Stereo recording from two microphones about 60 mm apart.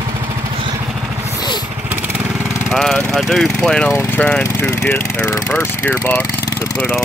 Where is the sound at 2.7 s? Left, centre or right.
Centre.